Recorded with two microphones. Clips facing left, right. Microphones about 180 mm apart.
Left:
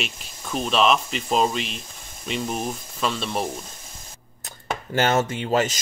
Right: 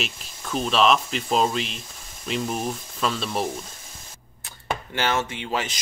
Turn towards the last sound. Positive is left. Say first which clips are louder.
# left 6 dB
turn(degrees=45)  # may be behind; listen again after turning